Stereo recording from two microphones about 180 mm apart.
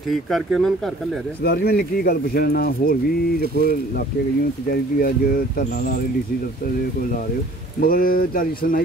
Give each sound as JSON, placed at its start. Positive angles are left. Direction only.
{"t": 0.1, "sound": "speech", "side_deg": 0}
{"t": 1.4, "sound": "speech", "side_deg": 60}
{"t": 5.0, "sound": "speech", "side_deg": 50}
{"t": 7.8, "sound": "speech", "side_deg": 50}